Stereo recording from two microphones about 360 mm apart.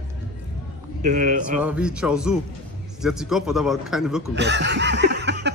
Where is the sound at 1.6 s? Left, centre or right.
Centre.